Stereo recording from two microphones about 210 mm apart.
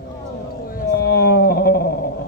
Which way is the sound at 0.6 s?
45° left (ahead or behind).